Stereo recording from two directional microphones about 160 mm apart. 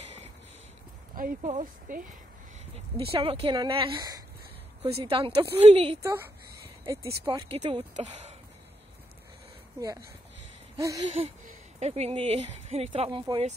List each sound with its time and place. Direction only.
1.1 s speech: 60° right (ahead or behind)
3.0 s speech: 35° right (ahead or behind)
4.8 s speech: 40° right (ahead or behind)
6.0 s a sound: 15° right (ahead or behind)
7.2 s speech: 35° right (ahead or behind)
10.8 s a sound: 20° right (ahead or behind)
11.1 s speech: 40° right (ahead or behind)